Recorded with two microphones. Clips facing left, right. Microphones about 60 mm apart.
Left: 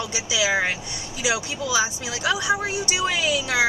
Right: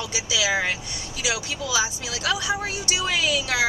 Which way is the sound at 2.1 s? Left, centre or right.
Centre.